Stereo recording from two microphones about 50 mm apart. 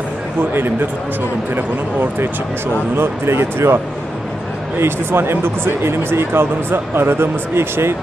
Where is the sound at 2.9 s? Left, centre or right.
Right.